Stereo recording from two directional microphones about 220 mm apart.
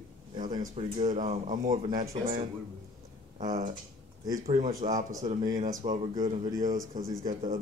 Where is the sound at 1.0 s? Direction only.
35° right (ahead or behind).